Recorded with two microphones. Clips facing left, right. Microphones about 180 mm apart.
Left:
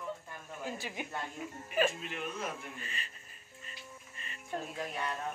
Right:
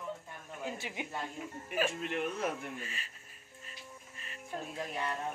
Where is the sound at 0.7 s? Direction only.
20° right (ahead or behind).